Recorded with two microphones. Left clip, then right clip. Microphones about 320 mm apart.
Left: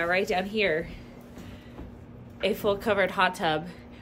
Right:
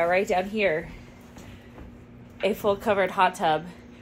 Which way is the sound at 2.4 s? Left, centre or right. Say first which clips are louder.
Right 2 dB; centre.